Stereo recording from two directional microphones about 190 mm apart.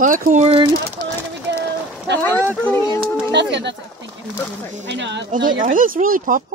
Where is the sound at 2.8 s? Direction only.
15° left (ahead or behind).